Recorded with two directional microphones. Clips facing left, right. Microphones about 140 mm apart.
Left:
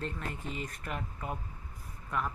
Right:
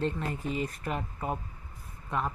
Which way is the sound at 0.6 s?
35° right (ahead or behind).